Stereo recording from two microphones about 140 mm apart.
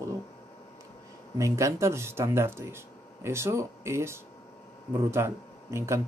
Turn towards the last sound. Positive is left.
turn(degrees=-20)  # may be behind; listen again after turning